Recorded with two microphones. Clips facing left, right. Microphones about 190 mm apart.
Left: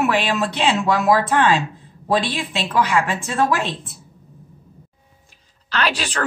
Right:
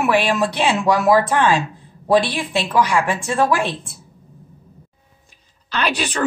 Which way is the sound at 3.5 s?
10° right (ahead or behind).